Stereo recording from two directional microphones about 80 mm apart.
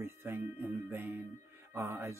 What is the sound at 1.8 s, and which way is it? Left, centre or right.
Music, right.